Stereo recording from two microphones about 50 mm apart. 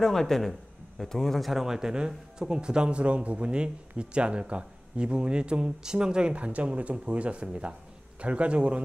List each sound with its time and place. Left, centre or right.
0.0 s a man's voice: centre; by 8.8 s right